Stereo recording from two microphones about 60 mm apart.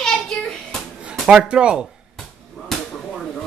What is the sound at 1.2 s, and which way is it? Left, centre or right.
Speech, centre.